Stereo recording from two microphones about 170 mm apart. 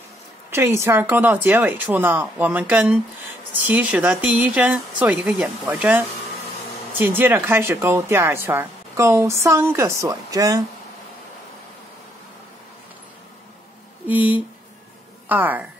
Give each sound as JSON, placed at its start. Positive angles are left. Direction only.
{"t": 0.5, "sound": "a woman's voice", "side_deg": -15}
{"t": 14.0, "sound": "a woman's voice", "side_deg": -10}